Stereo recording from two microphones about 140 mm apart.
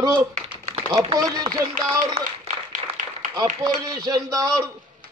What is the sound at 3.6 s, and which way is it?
Speech, 30° right (ahead or behind).